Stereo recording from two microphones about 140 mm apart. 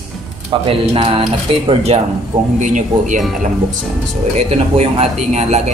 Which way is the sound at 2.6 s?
65° right (ahead or behind).